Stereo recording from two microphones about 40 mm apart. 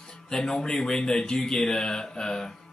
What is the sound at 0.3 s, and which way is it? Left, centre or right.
Speech, centre.